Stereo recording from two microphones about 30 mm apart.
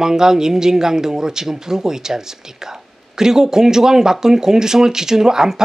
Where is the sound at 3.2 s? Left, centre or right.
Centre.